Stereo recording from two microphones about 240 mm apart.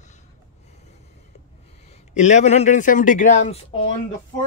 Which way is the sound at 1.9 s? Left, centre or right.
Left.